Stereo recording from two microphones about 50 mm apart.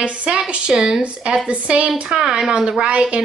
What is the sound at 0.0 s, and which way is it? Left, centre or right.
A woman's voice, right.